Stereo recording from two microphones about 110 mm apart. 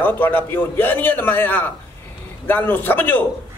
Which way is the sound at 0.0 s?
15° left (ahead or behind).